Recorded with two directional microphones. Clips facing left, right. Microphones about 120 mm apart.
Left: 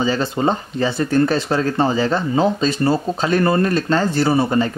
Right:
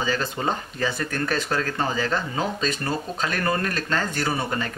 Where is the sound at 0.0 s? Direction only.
30° left (ahead or behind).